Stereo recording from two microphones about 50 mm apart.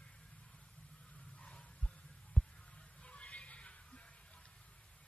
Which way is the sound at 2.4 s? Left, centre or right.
Left.